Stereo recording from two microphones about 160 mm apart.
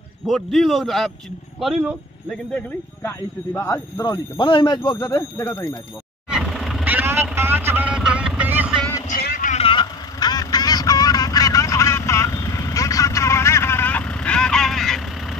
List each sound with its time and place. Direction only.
0.3 s a man's voice: centre (ahead or behind)
3.0 s speech: 15° left (ahead or behind)
6.3 s vehicle: centre (ahead or behind)
6.8 s vehicle: 10° right (ahead or behind)
9.1 s vehicle: 70° left (ahead or behind)
9.5 s vehicle: 35° left (ahead or behind); by 15.0 s centre (ahead or behind)